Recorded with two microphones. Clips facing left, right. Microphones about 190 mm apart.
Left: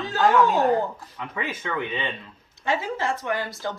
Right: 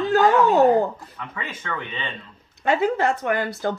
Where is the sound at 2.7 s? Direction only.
60° right (ahead or behind).